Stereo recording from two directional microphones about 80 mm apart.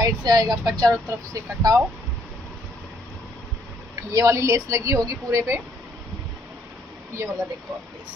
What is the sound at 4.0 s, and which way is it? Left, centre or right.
A woman's voice, right.